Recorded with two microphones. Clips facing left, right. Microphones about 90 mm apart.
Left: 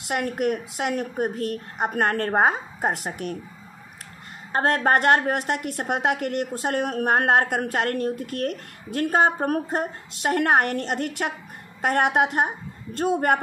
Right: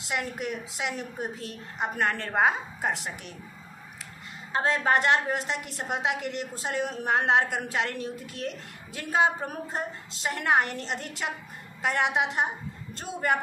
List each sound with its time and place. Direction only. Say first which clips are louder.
0.0 s a woman's voice: left 7 dB; 55° left (ahead or behind)
4.5 s a woman's voice: left 4 dB; 55° left (ahead or behind)